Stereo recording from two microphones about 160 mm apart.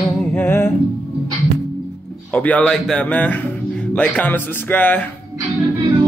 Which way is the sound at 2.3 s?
10° left (ahead or behind).